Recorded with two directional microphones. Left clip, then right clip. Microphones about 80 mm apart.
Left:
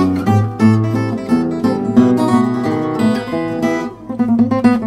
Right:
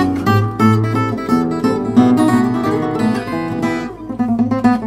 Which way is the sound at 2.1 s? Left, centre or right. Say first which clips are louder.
Right 1 dB; left.